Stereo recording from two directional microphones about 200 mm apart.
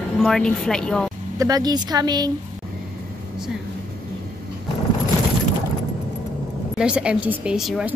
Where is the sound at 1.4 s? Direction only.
20° right (ahead or behind).